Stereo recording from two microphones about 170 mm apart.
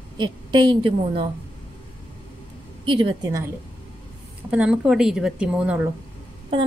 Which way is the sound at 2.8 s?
30° right (ahead or behind).